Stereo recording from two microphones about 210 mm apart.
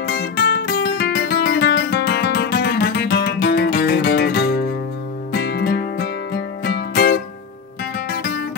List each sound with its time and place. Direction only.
0.0 s music: 45° left (ahead or behind)